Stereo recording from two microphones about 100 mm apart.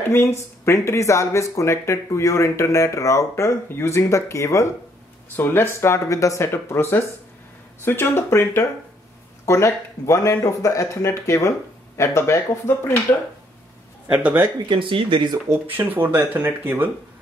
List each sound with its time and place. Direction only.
0.1 s speech: 25° left (ahead or behind)
14.1 s speech: 15° right (ahead or behind)
14.7 s speech: 60° right (ahead or behind)
15.5 s speech: 20° right (ahead or behind)